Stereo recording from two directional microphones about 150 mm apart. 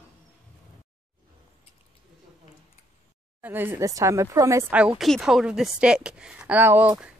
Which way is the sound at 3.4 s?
15° right (ahead or behind).